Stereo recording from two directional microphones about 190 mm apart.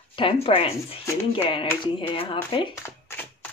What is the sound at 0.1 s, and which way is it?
Speech, 25° left (ahead or behind).